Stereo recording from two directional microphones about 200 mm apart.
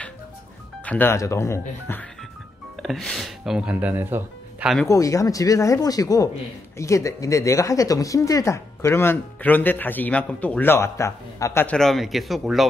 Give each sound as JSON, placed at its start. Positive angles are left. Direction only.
{"t": 0.8, "sound": "speech", "side_deg": 10}
{"t": 2.8, "sound": "speech", "side_deg": 0}
{"t": 4.8, "sound": "speech", "side_deg": 15}